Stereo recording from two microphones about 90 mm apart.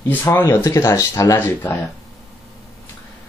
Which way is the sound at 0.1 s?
25° left (ahead or behind).